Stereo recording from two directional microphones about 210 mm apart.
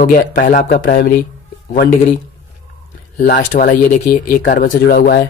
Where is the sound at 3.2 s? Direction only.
40° left (ahead or behind).